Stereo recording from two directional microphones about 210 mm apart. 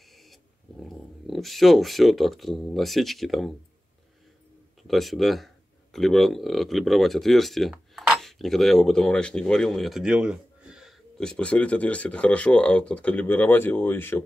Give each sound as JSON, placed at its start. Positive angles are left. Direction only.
{"t": 0.3, "sound": "speech", "side_deg": 0}
{"t": 4.8, "sound": "speech", "side_deg": 0}